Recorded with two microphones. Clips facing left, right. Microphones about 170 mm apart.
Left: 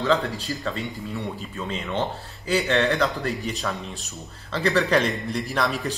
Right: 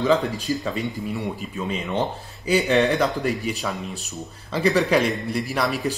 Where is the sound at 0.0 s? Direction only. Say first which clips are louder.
Right 3 dB; 20° right (ahead or behind).